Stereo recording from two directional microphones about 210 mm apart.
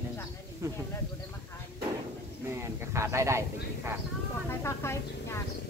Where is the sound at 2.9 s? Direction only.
15° right (ahead or behind).